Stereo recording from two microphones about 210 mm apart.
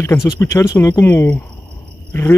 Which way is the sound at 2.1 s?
10° left (ahead or behind).